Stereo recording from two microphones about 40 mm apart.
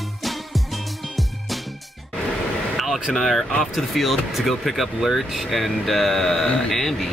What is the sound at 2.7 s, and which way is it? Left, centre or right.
Speech, centre.